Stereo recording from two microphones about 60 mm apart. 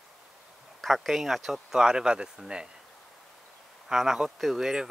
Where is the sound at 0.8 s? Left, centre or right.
Centre.